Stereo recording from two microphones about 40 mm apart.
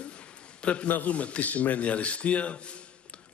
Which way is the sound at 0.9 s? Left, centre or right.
Left.